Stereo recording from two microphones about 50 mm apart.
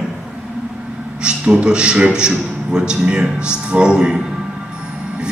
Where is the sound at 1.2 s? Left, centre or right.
Right.